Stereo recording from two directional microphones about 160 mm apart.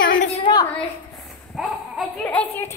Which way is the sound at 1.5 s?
Centre (ahead or behind).